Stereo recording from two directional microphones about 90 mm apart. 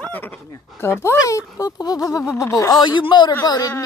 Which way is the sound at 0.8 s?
30° left (ahead or behind).